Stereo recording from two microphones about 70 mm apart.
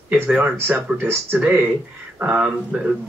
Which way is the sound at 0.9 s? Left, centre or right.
Right.